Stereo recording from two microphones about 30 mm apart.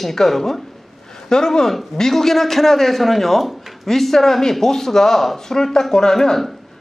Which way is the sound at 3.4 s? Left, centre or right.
Centre.